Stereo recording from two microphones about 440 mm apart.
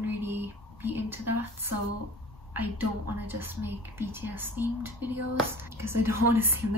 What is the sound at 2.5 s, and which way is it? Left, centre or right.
A woman's voice, centre.